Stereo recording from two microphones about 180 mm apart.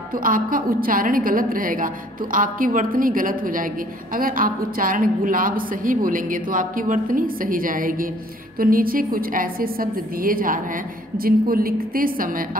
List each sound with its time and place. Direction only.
0.2 s a woman's voice: 50° right (ahead or behind)